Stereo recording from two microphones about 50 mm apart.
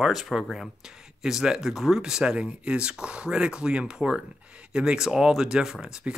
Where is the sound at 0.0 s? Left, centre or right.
Centre.